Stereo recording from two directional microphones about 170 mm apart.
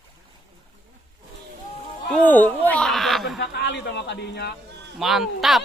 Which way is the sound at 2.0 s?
5° left (ahead or behind).